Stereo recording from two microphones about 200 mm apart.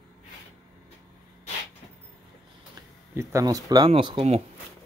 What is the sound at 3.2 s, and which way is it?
Speech, 15° right (ahead or behind).